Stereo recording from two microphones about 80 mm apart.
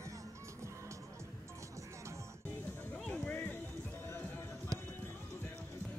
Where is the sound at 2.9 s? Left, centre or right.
Centre.